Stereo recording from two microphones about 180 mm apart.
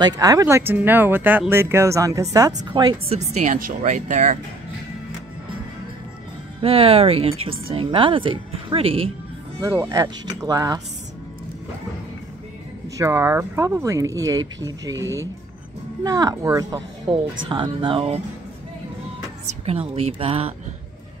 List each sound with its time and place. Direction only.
0.0 s speech: 20° right (ahead or behind)
3.4 s speech: 45° right (ahead or behind)
6.6 s speech: 30° right (ahead or behind)
9.6 s speech: 15° right (ahead or behind)
12.9 s speech: 15° right (ahead or behind)
19.4 s a woman's voice: 35° right (ahead or behind)